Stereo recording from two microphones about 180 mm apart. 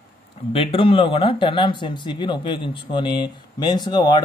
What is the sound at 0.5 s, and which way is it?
Speech, 30° left (ahead or behind).